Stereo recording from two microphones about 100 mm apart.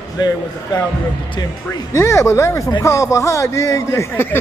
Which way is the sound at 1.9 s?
30° left (ahead or behind).